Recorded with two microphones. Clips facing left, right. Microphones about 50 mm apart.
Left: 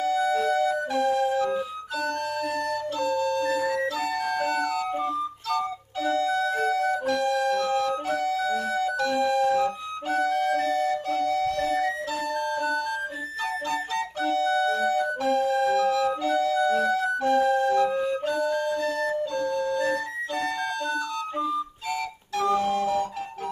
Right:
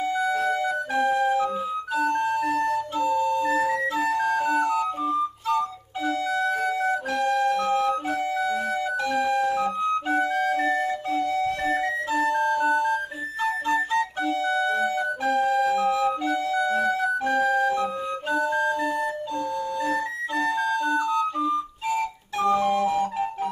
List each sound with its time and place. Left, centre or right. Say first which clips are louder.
0.0 s music: left 1 dB; right
2.0 s flute: right 4 dB; right
4.6 s music: right 4 dB; right
6.0 s music: even; right
12.2 s music: right 8 dB; right
13.4 s flute: right 5 dB; right
18.3 s music: right 2 dB; right
19.8 s music: right 1 dB; centre
20.8 s flute: right 6 dB; right